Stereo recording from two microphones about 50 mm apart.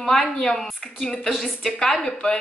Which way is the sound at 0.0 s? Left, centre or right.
Centre.